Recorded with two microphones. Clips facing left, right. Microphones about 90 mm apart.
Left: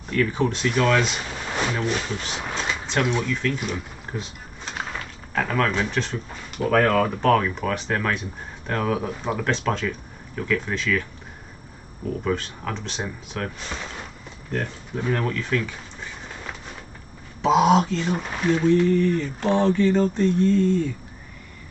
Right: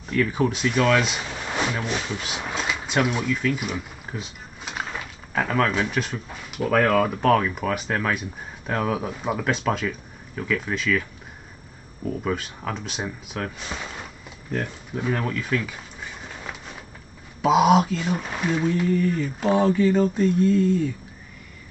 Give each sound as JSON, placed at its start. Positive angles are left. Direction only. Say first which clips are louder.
{"t": 0.1, "sound": "speech", "louder": "even", "side_deg": -5}
{"t": 12.2, "sound": "speech", "louder": "left 3 dB", "side_deg": -5}
{"t": 17.4, "sound": "speech", "louder": "even", "side_deg": -5}